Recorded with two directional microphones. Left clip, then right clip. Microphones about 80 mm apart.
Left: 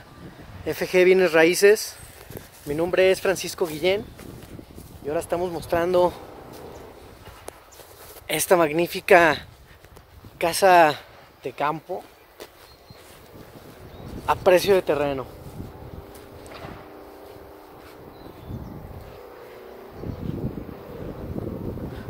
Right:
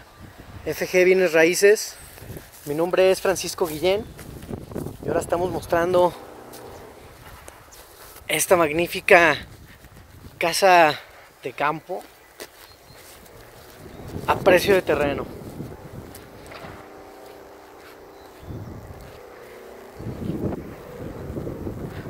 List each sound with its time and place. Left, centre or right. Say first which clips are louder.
0.7 s speech: even; left
2.7 s speech: right 1 dB; centre
5.1 s speech: right 2 dB; right
5.5 s speech: right 2 dB; centre
5.9 s speech: even; centre
8.3 s speech: right 1 dB; left
9.0 s speech: right 1 dB; left
10.3 s speech: even; left
14.2 s a sound: right 1 dB; left
14.6 s speech: right 1 dB; left